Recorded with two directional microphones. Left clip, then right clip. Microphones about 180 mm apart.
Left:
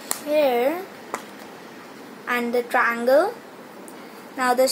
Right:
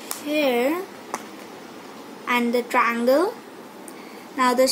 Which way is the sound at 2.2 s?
40° right (ahead or behind).